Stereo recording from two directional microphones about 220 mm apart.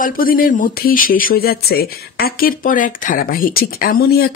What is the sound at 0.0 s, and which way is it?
Speech, 40° left (ahead or behind).